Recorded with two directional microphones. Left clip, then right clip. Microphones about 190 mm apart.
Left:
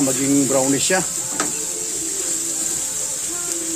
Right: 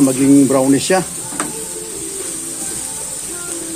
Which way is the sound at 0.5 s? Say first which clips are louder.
Right 5 dB; 20° right (ahead or behind).